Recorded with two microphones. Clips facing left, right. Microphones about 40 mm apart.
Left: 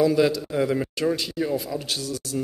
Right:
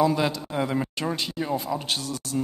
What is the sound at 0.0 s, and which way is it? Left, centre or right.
A man's voice, centre.